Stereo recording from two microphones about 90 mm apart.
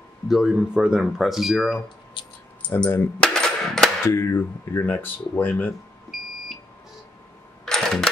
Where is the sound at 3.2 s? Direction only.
5° left (ahead or behind).